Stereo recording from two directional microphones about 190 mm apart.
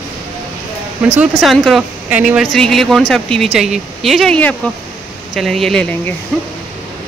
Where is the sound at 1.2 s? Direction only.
Centre (ahead or behind).